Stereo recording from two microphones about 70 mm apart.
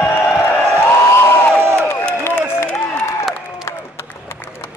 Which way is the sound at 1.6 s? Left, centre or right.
Right.